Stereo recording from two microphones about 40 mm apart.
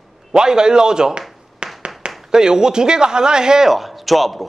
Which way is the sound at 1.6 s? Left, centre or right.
Right.